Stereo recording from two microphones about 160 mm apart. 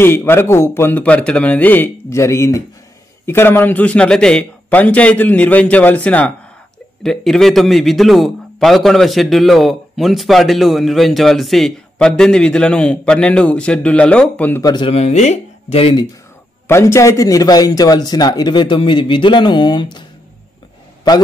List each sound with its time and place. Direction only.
0.0 s a man's voice: 15° left (ahead or behind)
14.6 s a man's voice: 25° left (ahead or behind)
14.9 s speech: 40° left (ahead or behind)
16.6 s a man's voice: 15° left (ahead or behind)